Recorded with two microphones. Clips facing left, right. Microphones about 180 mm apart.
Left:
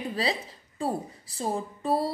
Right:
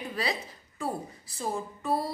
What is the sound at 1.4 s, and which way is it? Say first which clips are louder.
Speech: left 3 dB; 30° left (ahead or behind).